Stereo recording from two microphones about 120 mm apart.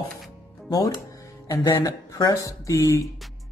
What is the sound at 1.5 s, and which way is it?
Speech, 30° left (ahead or behind).